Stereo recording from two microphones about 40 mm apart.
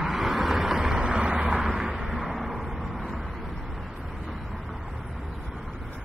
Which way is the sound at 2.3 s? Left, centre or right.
Centre.